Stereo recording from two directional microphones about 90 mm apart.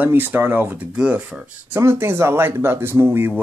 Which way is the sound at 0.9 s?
10° right (ahead or behind).